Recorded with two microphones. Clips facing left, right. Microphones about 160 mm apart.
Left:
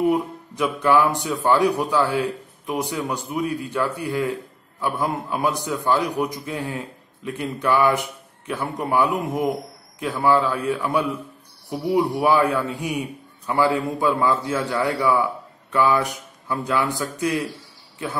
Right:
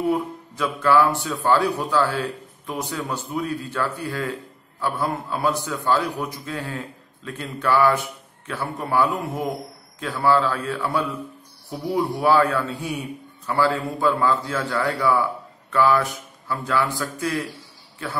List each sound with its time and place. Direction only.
0.1 s a man's voice: 15° left (ahead or behind)